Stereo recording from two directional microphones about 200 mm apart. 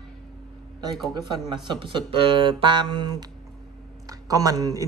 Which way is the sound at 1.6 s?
25° right (ahead or behind).